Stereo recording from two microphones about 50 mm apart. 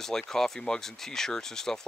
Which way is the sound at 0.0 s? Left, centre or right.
Centre.